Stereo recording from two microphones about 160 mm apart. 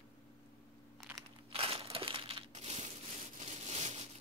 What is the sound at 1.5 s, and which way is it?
Crushing, 35° right (ahead or behind).